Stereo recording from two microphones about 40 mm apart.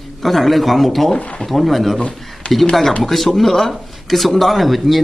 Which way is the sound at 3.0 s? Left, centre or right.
Centre.